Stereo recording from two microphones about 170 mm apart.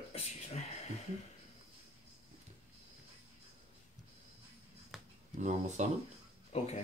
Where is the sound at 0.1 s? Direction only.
40° left (ahead or behind).